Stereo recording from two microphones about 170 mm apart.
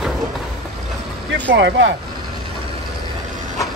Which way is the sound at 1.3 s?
90° right.